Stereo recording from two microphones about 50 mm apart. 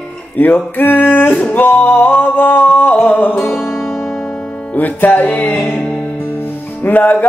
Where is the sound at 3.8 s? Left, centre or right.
Centre.